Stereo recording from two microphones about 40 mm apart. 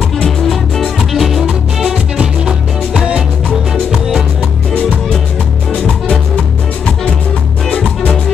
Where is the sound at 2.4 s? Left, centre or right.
Centre.